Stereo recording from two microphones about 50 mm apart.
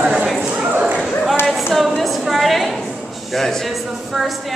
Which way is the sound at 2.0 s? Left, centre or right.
Centre.